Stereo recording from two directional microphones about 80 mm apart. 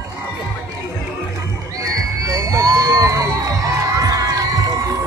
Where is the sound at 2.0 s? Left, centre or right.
Right.